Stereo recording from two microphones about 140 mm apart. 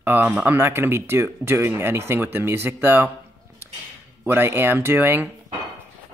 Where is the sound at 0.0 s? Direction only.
15° right (ahead or behind).